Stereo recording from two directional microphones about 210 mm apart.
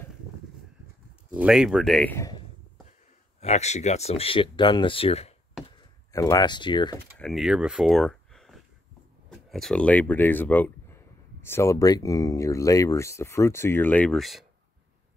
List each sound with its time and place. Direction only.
1.3 s speech: 5° right (ahead or behind)
2.1 s a sound: 15° left (ahead or behind)
3.3 s speech: 30° left (ahead or behind)
5.8 s speech: 15° left (ahead or behind)
7.2 s speech: centre (ahead or behind)